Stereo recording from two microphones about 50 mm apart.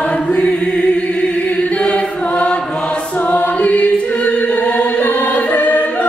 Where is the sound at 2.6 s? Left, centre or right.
Centre.